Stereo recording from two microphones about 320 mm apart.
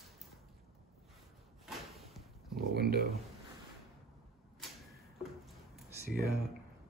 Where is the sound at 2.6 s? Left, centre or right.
Right.